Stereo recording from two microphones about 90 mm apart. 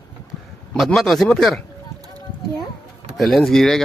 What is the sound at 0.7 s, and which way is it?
Speech, 5° left (ahead or behind).